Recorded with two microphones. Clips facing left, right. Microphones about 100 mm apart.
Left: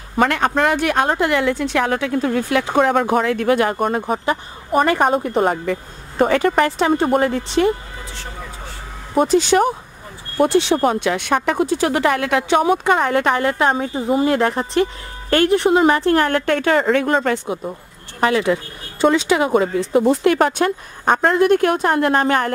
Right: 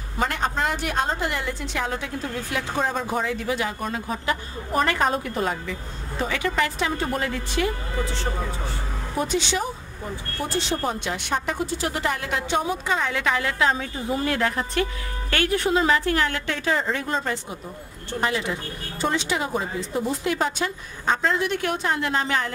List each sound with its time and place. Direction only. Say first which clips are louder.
0.2 s a woman's voice: left 8 dB; 70° left (ahead or behind); by 4.2 s 55° left (ahead or behind)
4.3 s speech: left 6 dB; 25° left (ahead or behind)
4.9 s speech: left 7 dB; 50° left (ahead or behind)
7.4 s speech: left 8 dB; 25° left (ahead or behind)
9.3 s speech: left 12 dB; 45° left (ahead or behind)
10.4 s a woman's voice: left 11 dB; 65° left (ahead or behind); by 13.8 s 40° left (ahead or behind)
14.2 s speech: left 7 dB; 25° left (ahead or behind)
15.9 s a woman's voice: left 6 dB; 40° left (ahead or behind)
16.3 s a woman's voice: left 8 dB; 55° left (ahead or behind); by 17.6 s 75° left (ahead or behind)
18.2 s speech: left 9 dB; 90° left; by 22.5 s 55° left (ahead or behind)